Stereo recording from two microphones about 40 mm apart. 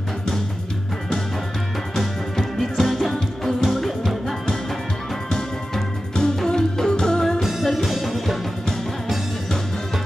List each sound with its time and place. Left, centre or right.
2.0 s music: centre
6.1 s music: centre
7.3 s music: centre